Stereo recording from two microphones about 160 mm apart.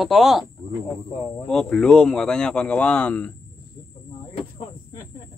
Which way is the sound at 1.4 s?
5° left (ahead or behind).